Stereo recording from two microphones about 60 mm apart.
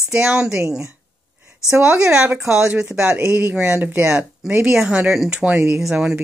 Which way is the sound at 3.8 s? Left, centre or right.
Right.